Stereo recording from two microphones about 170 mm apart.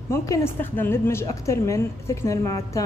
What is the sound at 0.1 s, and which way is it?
A woman's voice, 15° left (ahead or behind).